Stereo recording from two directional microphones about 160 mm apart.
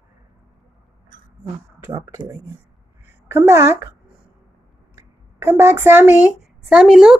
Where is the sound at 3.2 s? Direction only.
15° right (ahead or behind).